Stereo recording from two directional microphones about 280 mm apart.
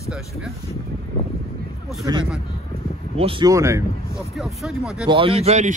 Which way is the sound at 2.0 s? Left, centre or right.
Centre.